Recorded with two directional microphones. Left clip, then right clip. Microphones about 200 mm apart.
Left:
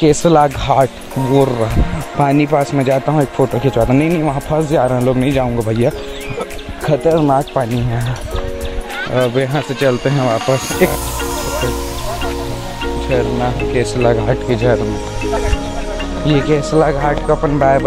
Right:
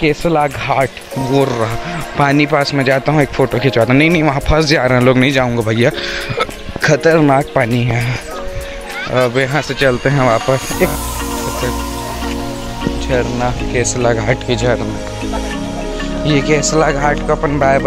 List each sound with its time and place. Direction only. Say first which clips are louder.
0.0 s speech: left 3 dB; 20° left (ahead or behind)
1.3 s speech: left 1 dB; 5° left (ahead or behind)
4.6 s speech: right 1 dB; 25° right (ahead or behind)
5.0 s speech: right 3 dB; 10° right (ahead or behind)
9.1 s speech: right 2 dB; 10° right (ahead or behind)
10.1 s speech: right 3 dB; 15° right (ahead or behind)
13.1 s speech: even; 5° right (ahead or behind)
16.3 s speech: right 1 dB; centre (ahead or behind)